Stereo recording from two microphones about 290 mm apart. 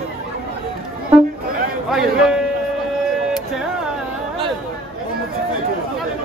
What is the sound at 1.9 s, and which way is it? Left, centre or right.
Speech, centre.